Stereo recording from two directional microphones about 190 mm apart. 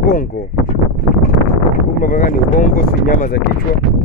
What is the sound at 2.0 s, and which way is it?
Speech, 45° left (ahead or behind).